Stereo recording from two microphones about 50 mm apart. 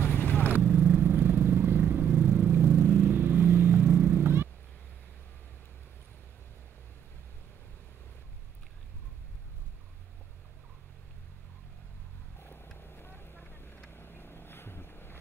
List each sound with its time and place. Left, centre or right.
0.0 s vehicle: left
0.9 s vehicle: right
3.9 s music: right
4.2 s music: right
12.7 s vehicle: left